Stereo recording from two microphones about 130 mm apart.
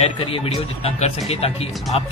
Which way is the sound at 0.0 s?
45° left (ahead or behind).